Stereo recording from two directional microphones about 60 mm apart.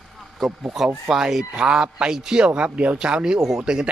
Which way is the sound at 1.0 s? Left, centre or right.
Centre.